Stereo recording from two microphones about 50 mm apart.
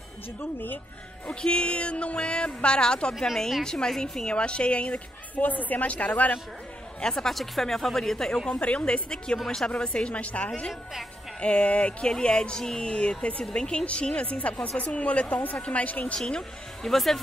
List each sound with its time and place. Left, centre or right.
0.4 s speech: left
1.2 s speech: centre
7.0 s speech: centre
7.3 s speech: centre
8.5 s speech: left
16.3 s speech: centre